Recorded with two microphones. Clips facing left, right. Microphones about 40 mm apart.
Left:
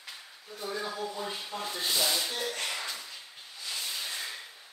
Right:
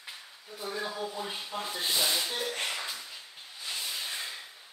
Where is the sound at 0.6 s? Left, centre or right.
Centre.